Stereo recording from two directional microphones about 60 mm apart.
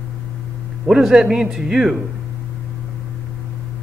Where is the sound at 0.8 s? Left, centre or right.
Centre.